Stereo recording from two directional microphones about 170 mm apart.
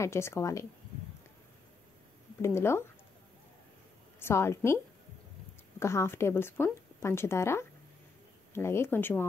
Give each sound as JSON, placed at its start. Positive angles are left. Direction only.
{"t": 0.0, "sound": "a woman's voice", "side_deg": 15}
{"t": 2.4, "sound": "a woman's voice", "side_deg": 15}
{"t": 4.2, "sound": "a woman's voice", "side_deg": 15}
{"t": 5.8, "sound": "a woman's voice", "side_deg": 15}